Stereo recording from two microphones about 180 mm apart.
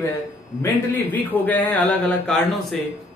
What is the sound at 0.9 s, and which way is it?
Speech, 10° left (ahead or behind).